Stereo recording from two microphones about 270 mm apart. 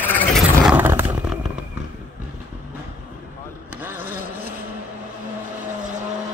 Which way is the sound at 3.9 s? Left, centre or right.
Right.